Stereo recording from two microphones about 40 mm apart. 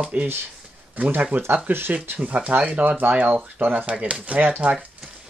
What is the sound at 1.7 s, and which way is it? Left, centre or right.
Speech, right.